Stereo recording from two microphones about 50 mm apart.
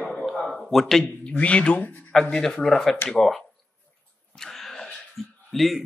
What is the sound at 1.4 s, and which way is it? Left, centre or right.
Speech, left.